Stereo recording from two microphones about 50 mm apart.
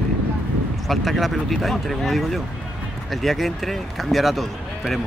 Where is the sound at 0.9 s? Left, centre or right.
Centre.